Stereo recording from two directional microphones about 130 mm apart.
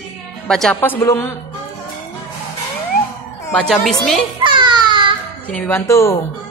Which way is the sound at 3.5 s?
5° left (ahead or behind).